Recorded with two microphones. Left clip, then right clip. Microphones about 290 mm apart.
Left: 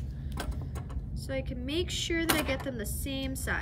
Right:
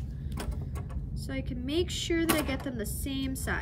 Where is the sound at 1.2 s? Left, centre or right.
Centre.